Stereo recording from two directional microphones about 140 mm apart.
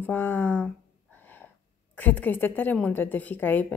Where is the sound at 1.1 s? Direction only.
15° left (ahead or behind).